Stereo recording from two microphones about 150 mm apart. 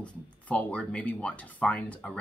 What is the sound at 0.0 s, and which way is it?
Speech, 10° left (ahead or behind).